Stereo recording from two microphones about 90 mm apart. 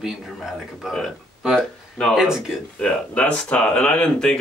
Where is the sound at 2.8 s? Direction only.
15° left (ahead or behind).